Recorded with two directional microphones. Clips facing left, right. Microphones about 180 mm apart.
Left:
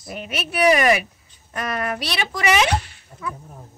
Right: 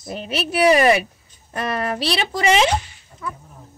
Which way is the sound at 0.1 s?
30° right (ahead or behind).